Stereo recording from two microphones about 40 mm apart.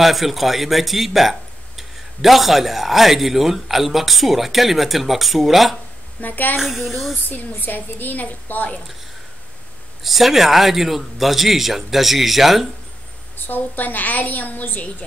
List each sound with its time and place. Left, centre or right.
0.0 s a man's voice: centre
6.2 s a woman's voice: left
6.6 s a man's voice: centre
7.2 s a woman's voice: left
10.0 s a man's voice: centre
13.5 s a woman's voice: left